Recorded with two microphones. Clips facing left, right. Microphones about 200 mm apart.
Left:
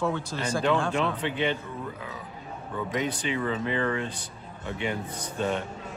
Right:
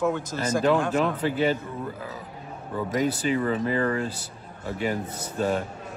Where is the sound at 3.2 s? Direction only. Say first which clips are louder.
Right 4 dB; 40° right (ahead or behind).